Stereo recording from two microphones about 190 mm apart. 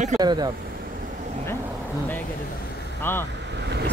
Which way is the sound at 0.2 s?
20° right (ahead or behind).